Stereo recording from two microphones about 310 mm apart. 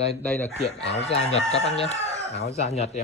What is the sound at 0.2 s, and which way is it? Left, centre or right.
Speech, centre.